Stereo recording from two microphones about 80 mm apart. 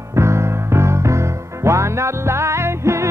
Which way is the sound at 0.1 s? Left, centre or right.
Right.